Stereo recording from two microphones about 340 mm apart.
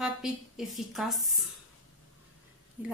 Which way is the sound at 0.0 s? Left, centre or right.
Centre.